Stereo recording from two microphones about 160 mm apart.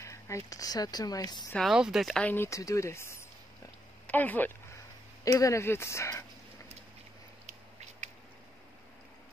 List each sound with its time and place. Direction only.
0.0 s speech: 20° left (ahead or behind)
1.5 s speech: centre (ahead or behind)
2.2 s speech: 15° left (ahead or behind)
8.0 s a sound: 45° right (ahead or behind)